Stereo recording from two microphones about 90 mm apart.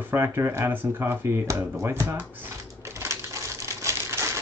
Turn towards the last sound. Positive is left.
turn(degrees=-30)  # may be behind; listen again after turning